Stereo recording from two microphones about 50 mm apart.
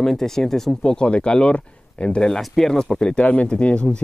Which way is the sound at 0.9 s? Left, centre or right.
Centre.